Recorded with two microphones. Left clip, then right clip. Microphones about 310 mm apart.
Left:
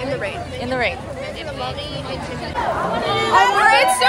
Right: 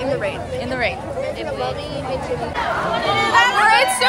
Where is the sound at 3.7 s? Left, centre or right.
Centre.